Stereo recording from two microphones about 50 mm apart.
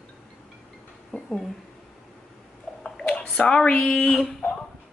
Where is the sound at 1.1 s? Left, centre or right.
Centre.